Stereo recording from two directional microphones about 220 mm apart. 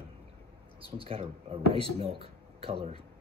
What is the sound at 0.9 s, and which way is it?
Speech, 25° right (ahead or behind).